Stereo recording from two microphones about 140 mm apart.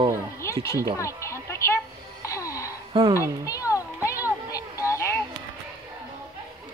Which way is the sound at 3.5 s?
25° left (ahead or behind).